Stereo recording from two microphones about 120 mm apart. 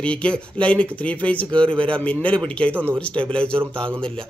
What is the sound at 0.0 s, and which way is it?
A man's voice, 10° left (ahead or behind).